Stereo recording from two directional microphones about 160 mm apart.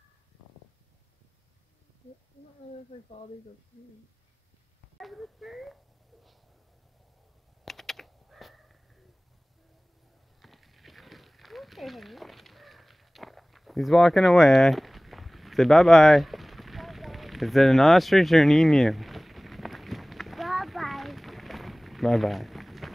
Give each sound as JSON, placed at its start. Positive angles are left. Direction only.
{"t": 2.9, "sound": "speech", "side_deg": 35}
{"t": 4.9, "sound": "speech", "side_deg": 0}
{"t": 7.6, "sound": "computer keyboard", "side_deg": 0}
{"t": 10.4, "sound": "a sound", "side_deg": 0}